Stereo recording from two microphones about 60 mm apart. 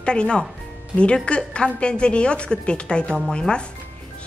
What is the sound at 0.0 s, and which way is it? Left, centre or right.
A woman's voice, centre.